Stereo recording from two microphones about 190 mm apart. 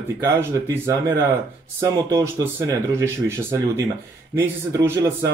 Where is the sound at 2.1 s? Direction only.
15° right (ahead or behind).